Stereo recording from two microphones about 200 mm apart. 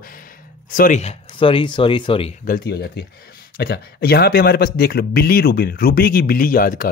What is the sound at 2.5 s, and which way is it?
Speech, 50° left (ahead or behind).